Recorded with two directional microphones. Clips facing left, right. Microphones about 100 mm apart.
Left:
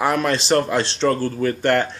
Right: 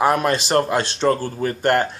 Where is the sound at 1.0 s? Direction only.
25° right (ahead or behind).